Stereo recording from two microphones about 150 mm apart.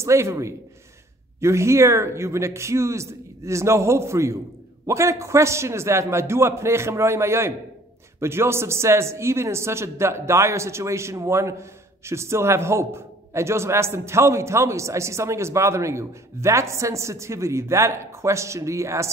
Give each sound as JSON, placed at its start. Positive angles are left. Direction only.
{"t": 0.0, "sound": "a man's voice", "side_deg": -20}